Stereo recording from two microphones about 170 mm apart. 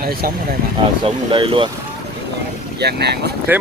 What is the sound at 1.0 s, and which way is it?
Speech, 30° right (ahead or behind).